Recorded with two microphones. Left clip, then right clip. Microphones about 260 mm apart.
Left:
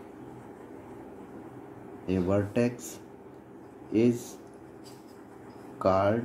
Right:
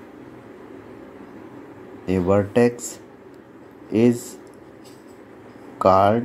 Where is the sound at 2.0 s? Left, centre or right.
Centre.